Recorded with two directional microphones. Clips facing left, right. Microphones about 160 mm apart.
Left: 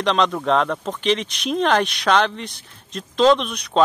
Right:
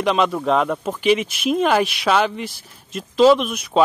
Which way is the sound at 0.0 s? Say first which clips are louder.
Right 1 dB; 5° right (ahead or behind).